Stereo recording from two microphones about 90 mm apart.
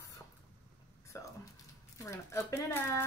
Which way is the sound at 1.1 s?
35° left (ahead or behind).